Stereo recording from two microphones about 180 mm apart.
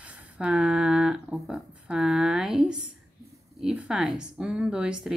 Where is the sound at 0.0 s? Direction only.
10° right (ahead or behind).